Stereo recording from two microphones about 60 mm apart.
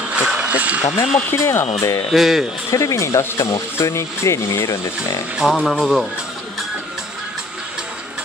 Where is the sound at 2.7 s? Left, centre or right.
Left.